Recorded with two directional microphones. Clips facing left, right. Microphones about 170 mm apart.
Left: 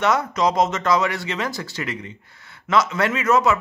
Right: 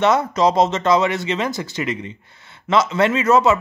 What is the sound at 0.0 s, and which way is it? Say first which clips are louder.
A man's voice: right 4 dB; 25° right (ahead or behind).